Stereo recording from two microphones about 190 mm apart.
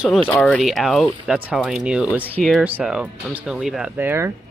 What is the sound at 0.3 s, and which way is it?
Speech, centre (ahead or behind).